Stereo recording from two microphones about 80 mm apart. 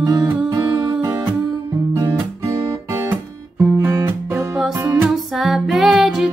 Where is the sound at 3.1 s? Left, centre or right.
Right.